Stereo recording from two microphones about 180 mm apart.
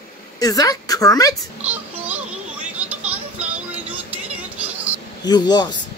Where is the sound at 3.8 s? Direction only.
10° right (ahead or behind).